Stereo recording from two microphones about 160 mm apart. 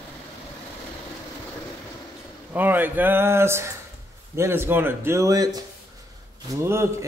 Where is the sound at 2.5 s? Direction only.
10° right (ahead or behind).